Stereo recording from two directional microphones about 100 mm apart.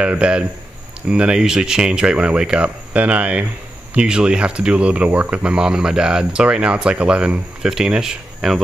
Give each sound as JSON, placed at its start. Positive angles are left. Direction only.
{"t": 0.0, "sound": "speech", "side_deg": -10}